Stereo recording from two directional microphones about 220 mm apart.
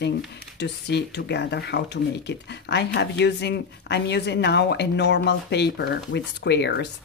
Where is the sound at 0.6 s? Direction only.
50° left (ahead or behind).